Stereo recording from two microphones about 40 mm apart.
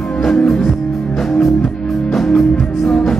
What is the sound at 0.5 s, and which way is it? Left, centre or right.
Music, centre.